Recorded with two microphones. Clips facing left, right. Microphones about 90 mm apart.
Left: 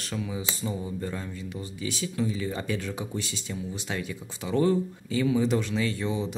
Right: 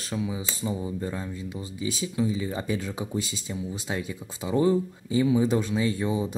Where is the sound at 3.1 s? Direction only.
15° right (ahead or behind).